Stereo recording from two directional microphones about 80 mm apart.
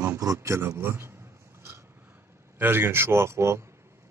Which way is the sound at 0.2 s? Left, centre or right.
Right.